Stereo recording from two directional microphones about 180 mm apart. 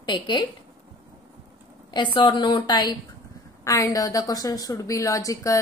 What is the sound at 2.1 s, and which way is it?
A woman's voice, 25° left (ahead or behind).